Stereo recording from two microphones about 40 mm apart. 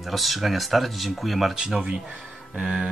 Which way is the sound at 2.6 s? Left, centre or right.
Right.